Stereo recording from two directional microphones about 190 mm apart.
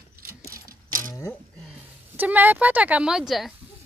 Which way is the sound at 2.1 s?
10° right (ahead or behind).